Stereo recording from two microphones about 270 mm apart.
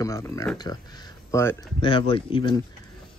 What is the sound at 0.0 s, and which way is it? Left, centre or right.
Speech, centre.